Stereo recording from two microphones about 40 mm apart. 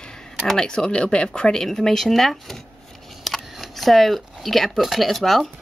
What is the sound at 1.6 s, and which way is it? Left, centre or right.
Speech, centre.